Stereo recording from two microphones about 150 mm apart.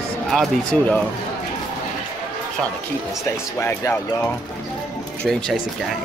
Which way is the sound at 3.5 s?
20° left (ahead or behind).